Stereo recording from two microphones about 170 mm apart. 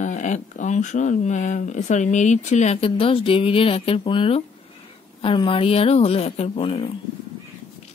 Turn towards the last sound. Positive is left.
turn(degrees=35)  # may be behind; listen again after turning